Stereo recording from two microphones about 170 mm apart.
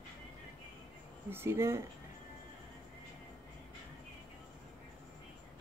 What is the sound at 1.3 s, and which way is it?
Speech, 15° right (ahead or behind).